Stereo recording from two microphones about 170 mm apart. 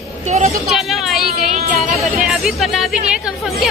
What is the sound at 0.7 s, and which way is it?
Speech, centre (ahead or behind).